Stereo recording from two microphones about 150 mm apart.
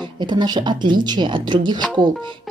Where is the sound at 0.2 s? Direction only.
30° right (ahead or behind).